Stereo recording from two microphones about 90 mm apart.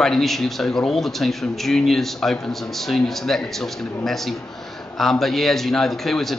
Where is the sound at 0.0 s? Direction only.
5° left (ahead or behind).